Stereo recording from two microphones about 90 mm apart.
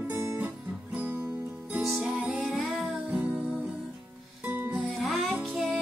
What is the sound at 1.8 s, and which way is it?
Music, centre (ahead or behind).